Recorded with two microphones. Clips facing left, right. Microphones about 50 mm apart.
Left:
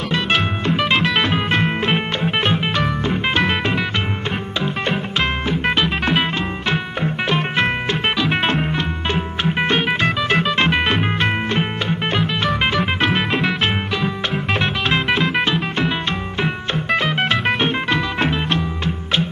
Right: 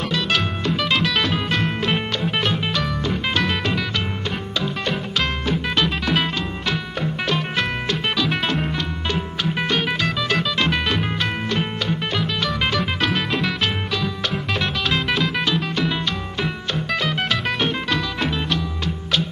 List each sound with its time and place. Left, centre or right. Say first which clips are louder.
0.1 s music: left 5 dB; left